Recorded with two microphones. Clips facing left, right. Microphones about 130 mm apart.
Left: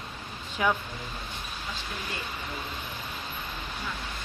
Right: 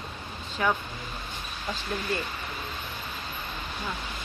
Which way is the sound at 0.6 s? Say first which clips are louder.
Even; 5° left (ahead or behind).